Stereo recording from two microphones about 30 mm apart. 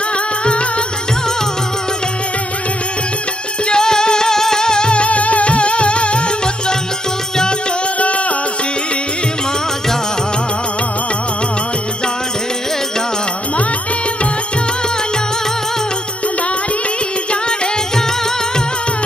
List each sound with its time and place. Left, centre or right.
0.5 s music: left
3.6 s music: left
8.0 s music: left